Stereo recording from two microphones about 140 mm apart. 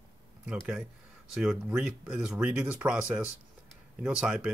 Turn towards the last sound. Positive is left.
turn(degrees=-5)  # may be behind; listen again after turning